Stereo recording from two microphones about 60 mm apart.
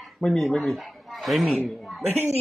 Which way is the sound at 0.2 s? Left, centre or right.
Centre.